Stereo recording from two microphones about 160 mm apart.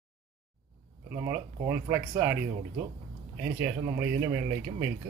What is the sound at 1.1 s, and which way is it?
Speech, 20° right (ahead or behind).